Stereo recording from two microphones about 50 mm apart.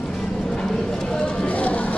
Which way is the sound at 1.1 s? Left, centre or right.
Left.